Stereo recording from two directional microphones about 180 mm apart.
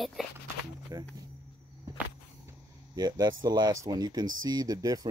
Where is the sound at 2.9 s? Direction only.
20° right (ahead or behind).